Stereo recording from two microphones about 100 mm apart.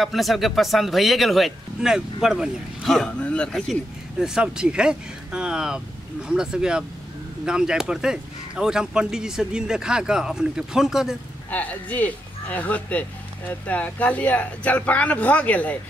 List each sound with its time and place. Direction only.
0.0 s speech: centre (ahead or behind)
4.2 s speech: 5° right (ahead or behind)
11.5 s speech: 15° left (ahead or behind)